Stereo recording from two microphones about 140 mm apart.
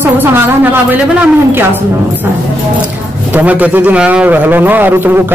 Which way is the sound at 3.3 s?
10° right (ahead or behind).